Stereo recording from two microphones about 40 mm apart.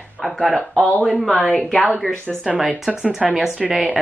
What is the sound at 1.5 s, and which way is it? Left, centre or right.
Speech, left.